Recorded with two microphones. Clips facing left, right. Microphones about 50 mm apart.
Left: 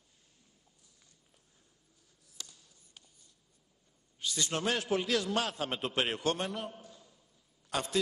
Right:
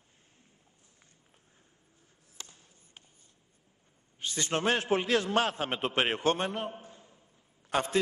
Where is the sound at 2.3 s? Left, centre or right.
Right.